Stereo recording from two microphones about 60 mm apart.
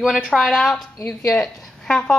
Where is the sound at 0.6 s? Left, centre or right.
Centre.